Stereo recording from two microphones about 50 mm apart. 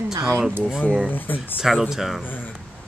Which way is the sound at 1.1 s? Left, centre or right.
Left.